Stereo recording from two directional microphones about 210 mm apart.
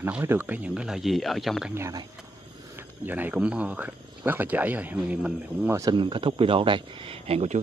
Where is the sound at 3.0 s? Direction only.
10° right (ahead or behind).